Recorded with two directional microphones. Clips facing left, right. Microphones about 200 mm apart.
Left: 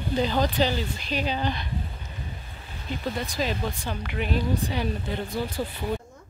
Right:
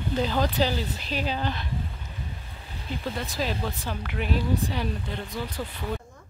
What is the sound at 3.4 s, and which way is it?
Speech, 5° right (ahead or behind).